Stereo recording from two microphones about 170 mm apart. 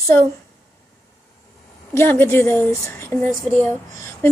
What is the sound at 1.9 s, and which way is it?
A woman's voice, 15° left (ahead or behind).